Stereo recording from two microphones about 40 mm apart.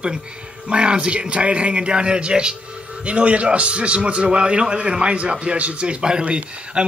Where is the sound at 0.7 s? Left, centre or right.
Right.